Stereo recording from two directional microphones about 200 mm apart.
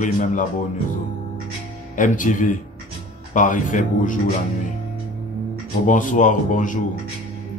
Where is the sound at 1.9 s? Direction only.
40° left (ahead or behind).